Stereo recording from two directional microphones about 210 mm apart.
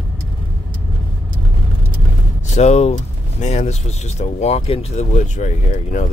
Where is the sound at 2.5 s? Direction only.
30° left (ahead or behind).